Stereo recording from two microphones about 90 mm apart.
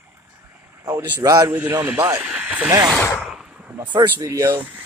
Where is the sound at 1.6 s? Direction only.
25° right (ahead or behind).